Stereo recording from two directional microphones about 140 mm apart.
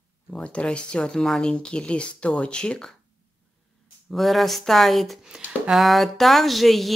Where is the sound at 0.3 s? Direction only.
10° left (ahead or behind).